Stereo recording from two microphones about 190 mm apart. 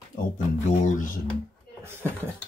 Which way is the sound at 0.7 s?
40° left (ahead or behind).